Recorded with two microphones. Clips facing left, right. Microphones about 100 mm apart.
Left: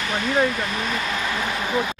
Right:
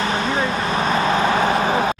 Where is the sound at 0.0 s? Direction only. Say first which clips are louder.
Right 1 dB; 30° right (ahead or behind).